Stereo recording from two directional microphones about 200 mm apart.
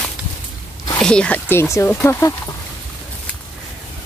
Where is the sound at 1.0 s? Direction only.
5° left (ahead or behind).